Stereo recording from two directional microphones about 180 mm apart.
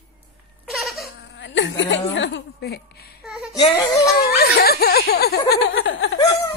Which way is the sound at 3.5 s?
25° left (ahead or behind).